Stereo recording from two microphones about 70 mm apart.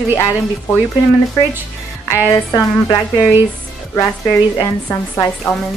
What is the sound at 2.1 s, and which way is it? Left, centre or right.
Speech, left.